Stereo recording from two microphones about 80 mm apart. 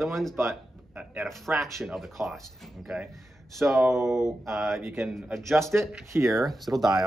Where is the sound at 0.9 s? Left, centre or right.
Centre.